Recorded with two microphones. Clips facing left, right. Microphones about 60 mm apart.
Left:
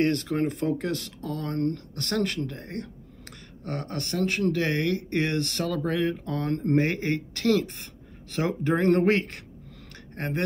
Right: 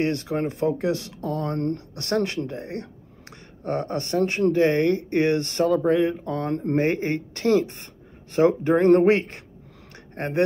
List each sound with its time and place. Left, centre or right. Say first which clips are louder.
0.0 s speech: even; centre
8.6 s speech: right 3 dB; centre